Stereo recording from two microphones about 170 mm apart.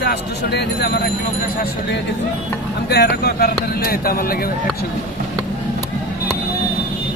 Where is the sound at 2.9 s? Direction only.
70° left (ahead or behind).